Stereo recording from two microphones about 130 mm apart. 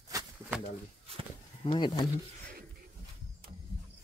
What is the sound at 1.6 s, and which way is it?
Speech, 35° left (ahead or behind).